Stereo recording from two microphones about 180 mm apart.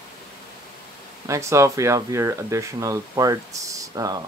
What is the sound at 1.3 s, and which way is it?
Speech, 15° right (ahead or behind).